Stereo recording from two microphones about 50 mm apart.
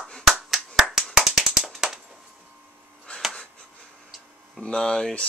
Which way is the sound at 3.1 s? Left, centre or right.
Left.